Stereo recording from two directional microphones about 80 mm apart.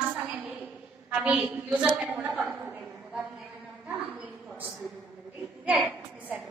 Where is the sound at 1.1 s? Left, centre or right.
Centre.